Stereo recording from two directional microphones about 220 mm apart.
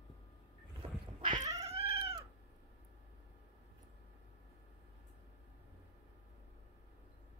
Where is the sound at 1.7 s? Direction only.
25° right (ahead or behind).